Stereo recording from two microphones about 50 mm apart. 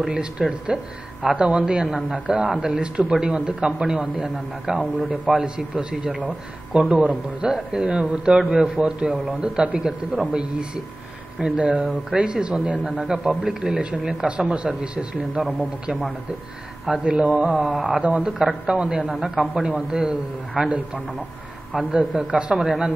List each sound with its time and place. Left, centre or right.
0.0 s a man's voice: centre
7.4 s speech: centre
7.8 s a man's voice: right
17.0 s a man's voice: right